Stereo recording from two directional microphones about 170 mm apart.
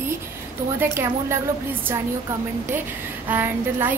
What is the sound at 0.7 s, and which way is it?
Speech, 15° right (ahead or behind).